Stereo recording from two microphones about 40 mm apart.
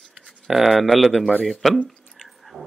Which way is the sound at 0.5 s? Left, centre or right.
Centre.